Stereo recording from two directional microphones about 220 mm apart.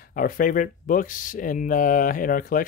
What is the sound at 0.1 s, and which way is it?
Speech, 40° left (ahead or behind).